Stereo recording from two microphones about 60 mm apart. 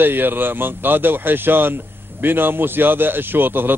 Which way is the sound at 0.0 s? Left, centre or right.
Right.